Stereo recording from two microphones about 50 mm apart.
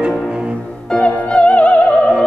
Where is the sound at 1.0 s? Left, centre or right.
Left.